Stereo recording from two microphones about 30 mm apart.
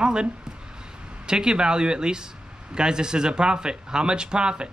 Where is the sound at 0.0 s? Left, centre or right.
Right.